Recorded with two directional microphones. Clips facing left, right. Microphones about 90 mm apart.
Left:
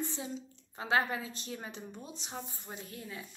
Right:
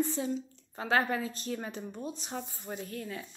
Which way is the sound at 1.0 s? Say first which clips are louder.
Right 2 dB; 20° left (ahead or behind).